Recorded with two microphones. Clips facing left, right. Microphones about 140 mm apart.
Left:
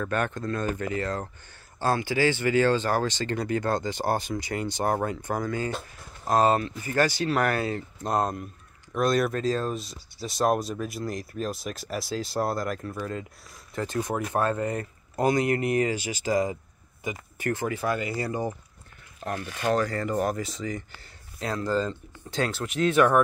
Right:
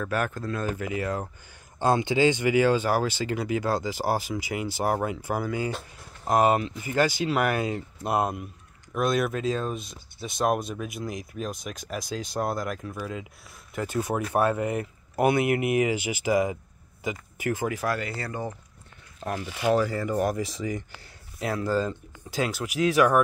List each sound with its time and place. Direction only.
0.0 s speech: 5° right (ahead or behind)
18.1 s speech: 15° left (ahead or behind)
19.2 s speech: 15° right (ahead or behind)